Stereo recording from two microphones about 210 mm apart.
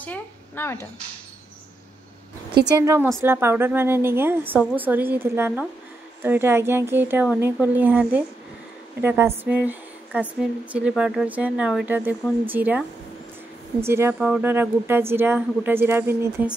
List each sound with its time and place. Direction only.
0.0 s a woman's voice: 10° left (ahead or behind)
2.6 s speech: 15° right (ahead or behind)
9.4 s a sound: 10° right (ahead or behind)
10.7 s speech: 5° right (ahead or behind)